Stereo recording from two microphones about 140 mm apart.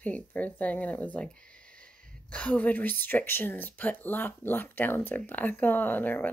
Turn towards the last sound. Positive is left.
turn(degrees=15)  # may be behind; listen again after turning